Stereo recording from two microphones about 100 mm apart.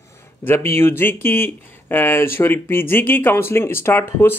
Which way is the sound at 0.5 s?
25° left (ahead or behind).